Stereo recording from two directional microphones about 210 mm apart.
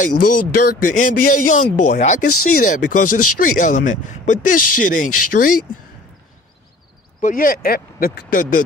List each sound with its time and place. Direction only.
0.0 s speech: 40° left (ahead or behind)
7.2 s speech: 40° left (ahead or behind)